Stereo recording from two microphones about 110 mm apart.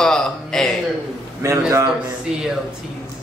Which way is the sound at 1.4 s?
25° right (ahead or behind).